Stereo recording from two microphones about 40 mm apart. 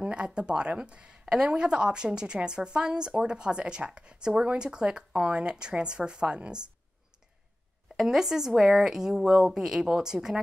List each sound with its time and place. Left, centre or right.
0.0 s speech: right
7.9 s speech: centre